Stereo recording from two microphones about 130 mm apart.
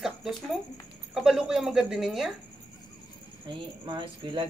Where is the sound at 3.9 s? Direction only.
35° right (ahead or behind).